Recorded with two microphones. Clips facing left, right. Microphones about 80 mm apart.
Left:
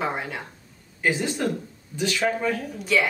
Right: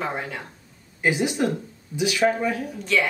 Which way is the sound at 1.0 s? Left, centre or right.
Centre.